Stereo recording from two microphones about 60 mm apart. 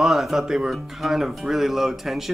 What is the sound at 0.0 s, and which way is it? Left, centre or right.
Speech, centre.